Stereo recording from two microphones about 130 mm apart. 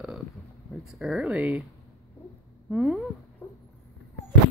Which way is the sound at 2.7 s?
5° right (ahead or behind).